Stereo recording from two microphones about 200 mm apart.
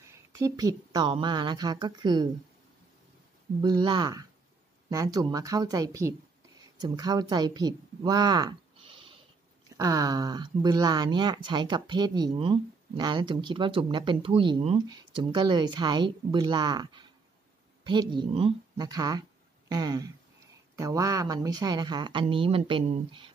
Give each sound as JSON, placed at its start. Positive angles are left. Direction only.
{"t": 0.0, "sound": "a woman's voice", "side_deg": -15}
{"t": 3.6, "sound": "a woman's voice", "side_deg": -20}